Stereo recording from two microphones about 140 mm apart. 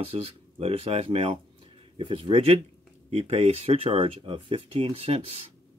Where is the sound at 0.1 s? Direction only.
45° right (ahead or behind).